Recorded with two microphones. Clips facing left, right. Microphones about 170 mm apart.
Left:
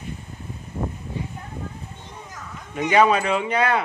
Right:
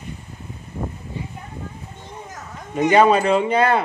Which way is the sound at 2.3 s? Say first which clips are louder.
Right 5 dB; 40° right (ahead or behind).